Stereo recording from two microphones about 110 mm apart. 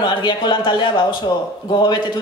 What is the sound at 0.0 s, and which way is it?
Speech, 45° left (ahead or behind).